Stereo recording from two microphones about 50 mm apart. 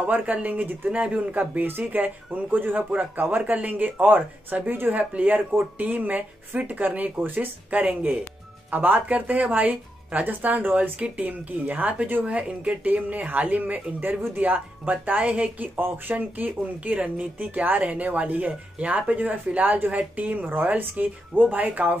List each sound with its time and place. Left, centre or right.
0.0 s speech: right
4.9 s speech: right
15.7 s speech: right
16.2 s speech: right